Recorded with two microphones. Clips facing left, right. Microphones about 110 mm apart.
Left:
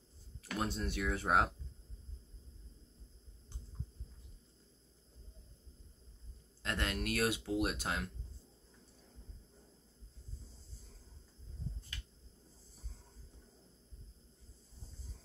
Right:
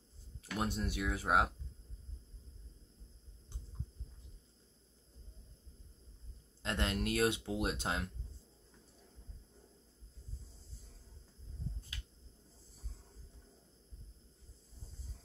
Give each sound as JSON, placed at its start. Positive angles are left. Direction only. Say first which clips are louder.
{"t": 0.4, "sound": "speech", "louder": "right 1 dB", "side_deg": -15}
{"t": 6.6, "sound": "speech", "louder": "right 2 dB", "side_deg": -25}